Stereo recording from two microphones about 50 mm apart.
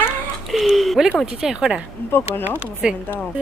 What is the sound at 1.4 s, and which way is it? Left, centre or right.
Speech, centre.